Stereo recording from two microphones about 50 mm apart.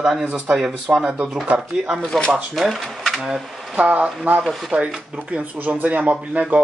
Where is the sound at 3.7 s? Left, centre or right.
Right.